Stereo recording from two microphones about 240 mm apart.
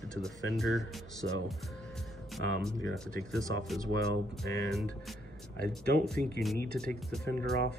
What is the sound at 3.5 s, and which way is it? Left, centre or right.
Speech, right.